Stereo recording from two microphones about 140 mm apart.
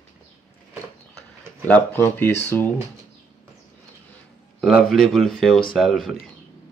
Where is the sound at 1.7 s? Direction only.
15° left (ahead or behind).